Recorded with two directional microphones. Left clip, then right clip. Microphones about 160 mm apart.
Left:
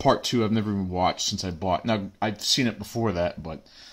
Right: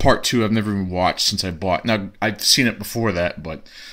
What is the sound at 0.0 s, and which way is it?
Speech, 15° right (ahead or behind).